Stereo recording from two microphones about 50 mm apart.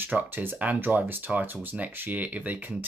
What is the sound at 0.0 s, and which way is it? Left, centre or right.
Speech, right.